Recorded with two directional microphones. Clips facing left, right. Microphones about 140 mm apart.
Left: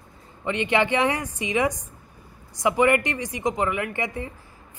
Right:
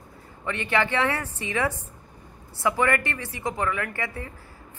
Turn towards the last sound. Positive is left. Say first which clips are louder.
# left 3 dB
turn(degrees=20)  # may be behind; listen again after turning